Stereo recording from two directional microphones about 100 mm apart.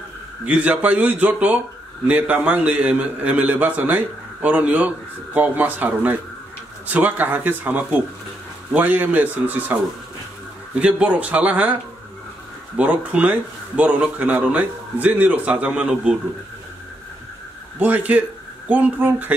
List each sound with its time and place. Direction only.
0.5 s a man's voice: 15° right (ahead or behind)
10.8 s a man's voice: 10° right (ahead or behind)
17.7 s a man's voice: 15° right (ahead or behind)